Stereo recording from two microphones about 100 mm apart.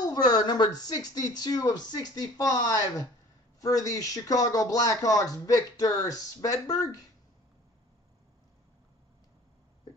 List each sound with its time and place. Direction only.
0.0 s speech: 40° left (ahead or behind)